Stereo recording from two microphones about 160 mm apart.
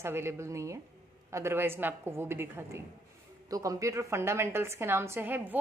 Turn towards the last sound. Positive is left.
turn(degrees=-10)  # may be behind; listen again after turning